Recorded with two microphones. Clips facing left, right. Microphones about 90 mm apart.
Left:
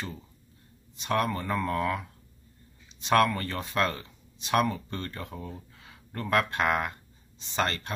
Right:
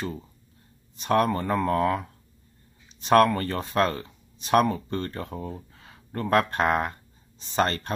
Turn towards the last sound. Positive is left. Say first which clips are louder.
# right 5 dB
turn(degrees=-40)  # may be behind; listen again after turning